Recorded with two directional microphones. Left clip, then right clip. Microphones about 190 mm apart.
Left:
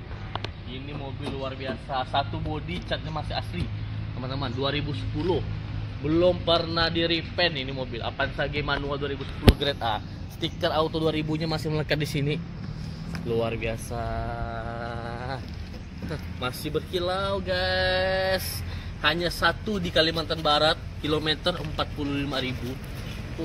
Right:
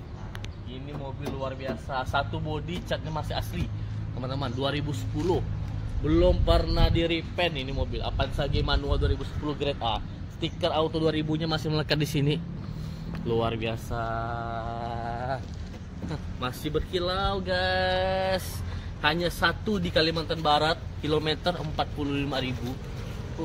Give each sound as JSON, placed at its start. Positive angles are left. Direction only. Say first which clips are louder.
{"t": 1.4, "sound": "a man's voice", "louder": "even", "side_deg": -35}
{"t": 4.2, "sound": "speech", "louder": "left 1 dB", "side_deg": -30}
{"t": 6.0, "sound": "speech", "louder": "left 2 dB", "side_deg": -25}
{"t": 7.0, "sound": "speech", "louder": "left 2 dB", "side_deg": -50}
{"t": 8.0, "sound": "speech", "louder": "left 3 dB", "side_deg": -20}
{"t": 9.8, "sound": "speech", "louder": "left 1 dB", "side_deg": -10}
{"t": 11.0, "sound": "a man's voice", "louder": "even", "side_deg": -25}
{"t": 11.7, "sound": "a man's voice", "louder": "even", "side_deg": -60}